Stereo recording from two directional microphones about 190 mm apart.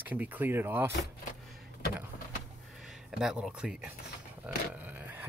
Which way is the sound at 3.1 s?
5° right (ahead or behind).